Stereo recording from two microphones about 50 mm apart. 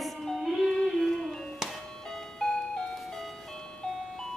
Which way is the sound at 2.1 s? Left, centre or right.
Centre.